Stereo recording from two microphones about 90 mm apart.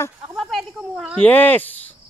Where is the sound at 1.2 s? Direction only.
20° left (ahead or behind).